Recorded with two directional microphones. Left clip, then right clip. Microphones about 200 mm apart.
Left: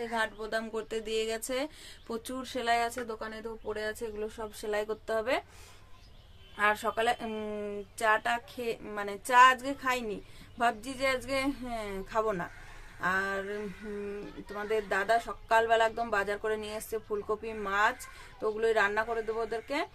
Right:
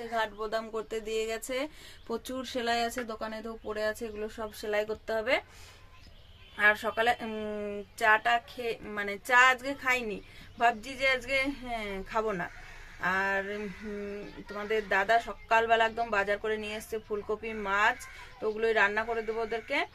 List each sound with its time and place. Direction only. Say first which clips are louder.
0.1 s speech: right 3 dB; centre (ahead or behind); by 4.5 s 20° right (ahead or behind)
4.6 s speech: right 2 dB; centre (ahead or behind)
6.5 s a man's voice: right 3 dB; centre (ahead or behind)